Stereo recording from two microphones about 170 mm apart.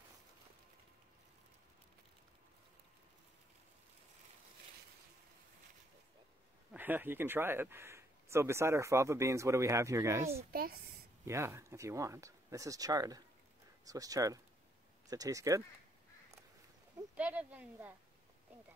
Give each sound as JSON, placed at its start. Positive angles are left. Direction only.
{"t": 6.7, "sound": "speech", "side_deg": -10}
{"t": 10.3, "sound": "a woman's voice", "side_deg": -60}
{"t": 11.2, "sound": "speech", "side_deg": -15}
{"t": 17.2, "sound": "speech", "side_deg": -10}